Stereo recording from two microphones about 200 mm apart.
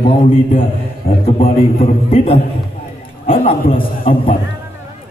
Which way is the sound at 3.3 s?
45° left (ahead or behind).